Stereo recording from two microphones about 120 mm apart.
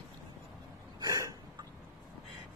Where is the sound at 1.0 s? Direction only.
30° right (ahead or behind).